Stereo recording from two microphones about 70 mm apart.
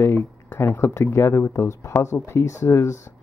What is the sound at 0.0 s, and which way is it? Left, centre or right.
Speech, left.